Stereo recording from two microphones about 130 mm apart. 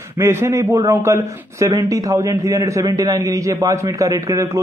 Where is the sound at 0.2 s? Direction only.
20° right (ahead or behind).